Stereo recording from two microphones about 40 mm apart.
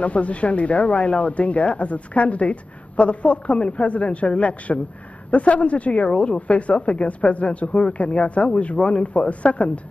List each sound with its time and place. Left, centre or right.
0.0 s speech: left